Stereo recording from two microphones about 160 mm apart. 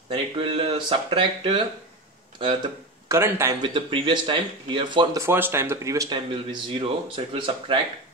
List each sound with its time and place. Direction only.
0.1 s speech: 40° right (ahead or behind)
3.1 s a man's voice: 15° right (ahead or behind)
3.6 s speech: 30° right (ahead or behind)
5.2 s speech: 15° right (ahead or behind); by 7.8 s 30° right (ahead or behind)